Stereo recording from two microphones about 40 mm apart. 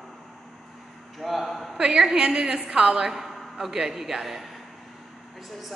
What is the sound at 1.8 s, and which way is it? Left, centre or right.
A woman's voice, right.